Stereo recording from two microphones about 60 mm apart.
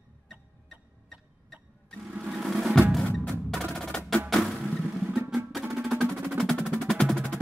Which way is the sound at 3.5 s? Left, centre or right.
Centre.